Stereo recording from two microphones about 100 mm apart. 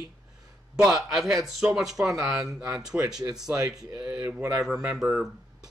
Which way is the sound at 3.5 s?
35° right (ahead or behind).